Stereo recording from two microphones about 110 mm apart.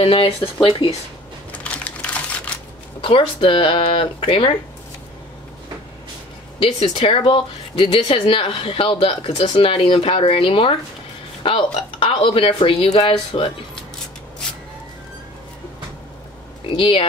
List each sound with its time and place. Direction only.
0.0 s speech: 55° left (ahead or behind)
1.5 s typing: 10° left (ahead or behind)
3.0 s speech: 55° left (ahead or behind)
6.9 s speech: 55° left (ahead or behind)
16.7 s speech: 55° left (ahead or behind)